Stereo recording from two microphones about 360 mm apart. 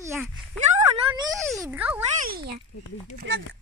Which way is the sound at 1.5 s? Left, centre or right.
Centre.